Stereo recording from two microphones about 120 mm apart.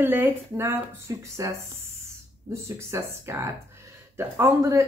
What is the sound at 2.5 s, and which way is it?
A woman's voice, 25° right (ahead or behind).